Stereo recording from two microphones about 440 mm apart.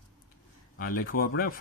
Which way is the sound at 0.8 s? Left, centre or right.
Centre.